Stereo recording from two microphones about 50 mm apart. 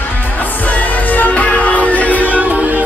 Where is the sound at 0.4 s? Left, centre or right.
Left.